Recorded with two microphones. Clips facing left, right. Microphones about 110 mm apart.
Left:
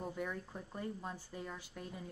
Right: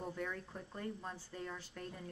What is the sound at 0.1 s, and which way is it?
Speech, 10° left (ahead or behind).